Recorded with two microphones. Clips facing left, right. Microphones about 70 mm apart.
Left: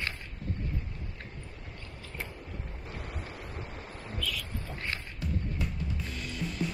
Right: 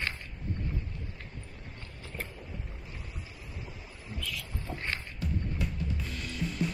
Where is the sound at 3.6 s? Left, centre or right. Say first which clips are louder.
Left 4 dB; left.